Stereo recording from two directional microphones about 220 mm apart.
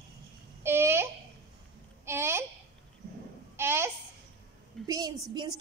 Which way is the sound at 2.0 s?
10° right (ahead or behind).